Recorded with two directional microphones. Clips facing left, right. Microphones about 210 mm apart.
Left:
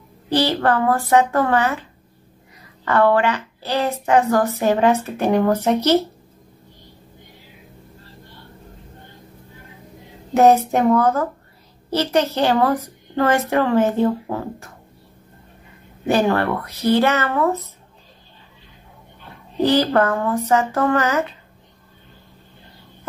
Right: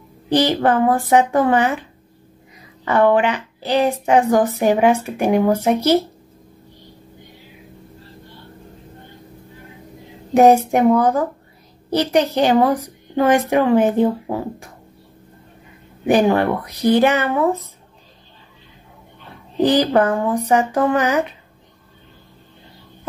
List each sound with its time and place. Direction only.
0.3 s a woman's voice: 15° right (ahead or behind)
10.3 s a woman's voice: 15° right (ahead or behind)
16.1 s a woman's voice: 15° right (ahead or behind)
19.6 s a woman's voice: 15° right (ahead or behind)